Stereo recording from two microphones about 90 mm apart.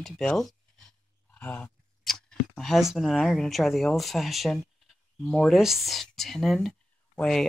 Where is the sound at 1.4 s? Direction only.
20° left (ahead or behind).